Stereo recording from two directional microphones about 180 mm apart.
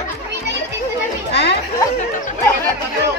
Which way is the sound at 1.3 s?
70° left (ahead or behind).